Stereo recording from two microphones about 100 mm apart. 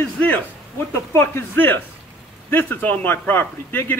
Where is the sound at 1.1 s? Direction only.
25° left (ahead or behind).